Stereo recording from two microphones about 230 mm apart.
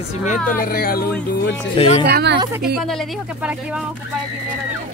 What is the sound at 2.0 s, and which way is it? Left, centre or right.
Speech, right.